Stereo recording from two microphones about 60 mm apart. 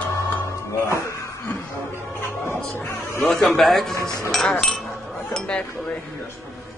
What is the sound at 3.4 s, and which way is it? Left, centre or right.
A man's voice, centre.